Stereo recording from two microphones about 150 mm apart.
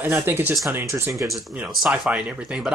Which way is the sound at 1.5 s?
5° right (ahead or behind).